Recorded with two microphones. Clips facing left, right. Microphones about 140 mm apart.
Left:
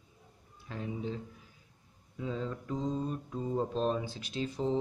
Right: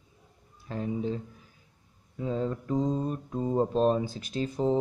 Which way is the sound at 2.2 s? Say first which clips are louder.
Right 6 dB; 45° right (ahead or behind).